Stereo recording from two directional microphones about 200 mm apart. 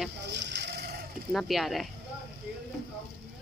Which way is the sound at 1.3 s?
Centre (ahead or behind).